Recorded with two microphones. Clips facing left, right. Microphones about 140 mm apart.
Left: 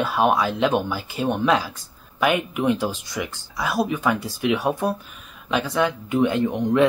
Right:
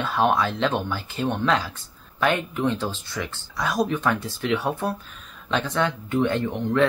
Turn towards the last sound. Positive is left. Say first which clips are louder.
# left 3 dB
turn(degrees=15)  # may be behind; listen again after turning